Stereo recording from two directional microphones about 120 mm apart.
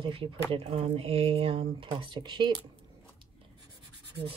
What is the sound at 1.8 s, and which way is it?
Speech, 40° right (ahead or behind).